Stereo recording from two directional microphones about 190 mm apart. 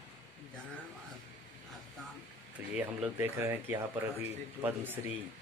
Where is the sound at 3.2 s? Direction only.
15° right (ahead or behind).